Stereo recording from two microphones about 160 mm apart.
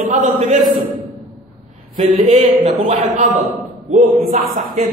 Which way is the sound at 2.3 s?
45° right (ahead or behind).